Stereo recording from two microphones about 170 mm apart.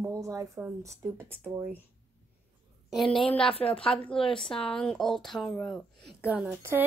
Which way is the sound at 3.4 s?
35° left (ahead or behind).